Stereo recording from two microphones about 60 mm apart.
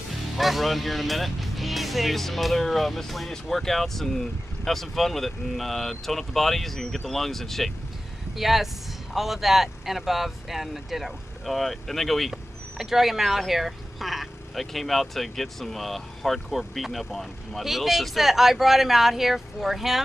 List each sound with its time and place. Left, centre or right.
0.4 s speech: centre